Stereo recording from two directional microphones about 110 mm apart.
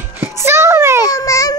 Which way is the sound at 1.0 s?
30° left (ahead or behind).